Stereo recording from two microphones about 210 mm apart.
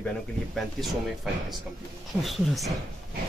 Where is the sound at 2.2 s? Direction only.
Centre (ahead or behind).